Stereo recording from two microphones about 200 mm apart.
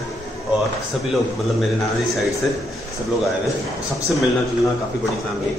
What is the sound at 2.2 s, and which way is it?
Speech, centre (ahead or behind).